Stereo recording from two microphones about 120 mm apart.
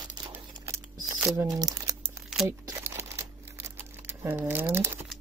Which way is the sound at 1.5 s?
30° right (ahead or behind).